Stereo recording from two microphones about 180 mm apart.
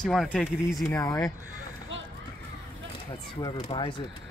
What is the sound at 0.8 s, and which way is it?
Speech, 15° left (ahead or behind).